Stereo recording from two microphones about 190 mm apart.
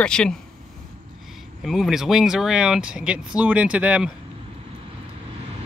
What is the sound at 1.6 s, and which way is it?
Speech, centre (ahead or behind).